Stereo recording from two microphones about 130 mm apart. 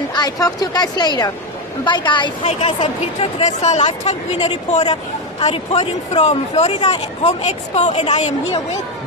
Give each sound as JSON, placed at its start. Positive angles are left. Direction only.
{"t": 0.1, "sound": "speech", "side_deg": 30}
{"t": 2.4, "sound": "speech", "side_deg": 55}